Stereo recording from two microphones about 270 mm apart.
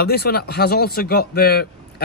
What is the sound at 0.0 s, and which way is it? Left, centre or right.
Speech, left.